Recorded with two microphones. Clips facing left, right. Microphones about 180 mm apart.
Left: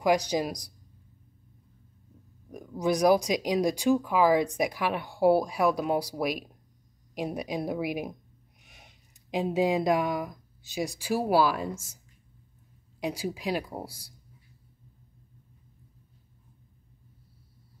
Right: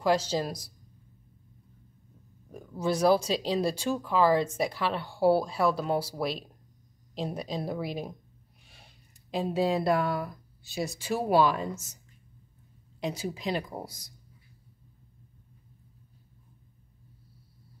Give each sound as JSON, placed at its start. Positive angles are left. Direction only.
{"t": 0.0, "sound": "speech", "side_deg": 15}
{"t": 2.5, "sound": "speech", "side_deg": 15}
{"t": 13.0, "sound": "speech", "side_deg": 10}